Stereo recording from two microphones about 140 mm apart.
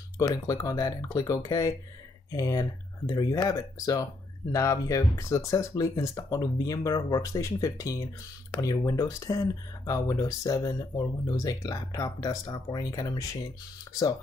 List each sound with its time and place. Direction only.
0.3 s speech: 25° left (ahead or behind)